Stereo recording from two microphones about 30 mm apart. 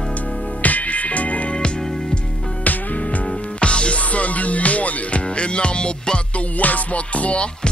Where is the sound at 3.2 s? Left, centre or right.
Left.